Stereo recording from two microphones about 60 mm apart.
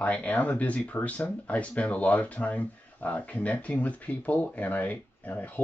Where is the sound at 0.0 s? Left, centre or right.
Left.